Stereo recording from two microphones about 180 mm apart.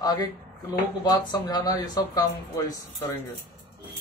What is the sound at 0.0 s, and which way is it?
Speech, 20° left (ahead or behind).